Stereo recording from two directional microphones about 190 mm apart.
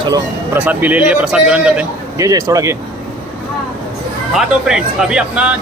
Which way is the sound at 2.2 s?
15° right (ahead or behind).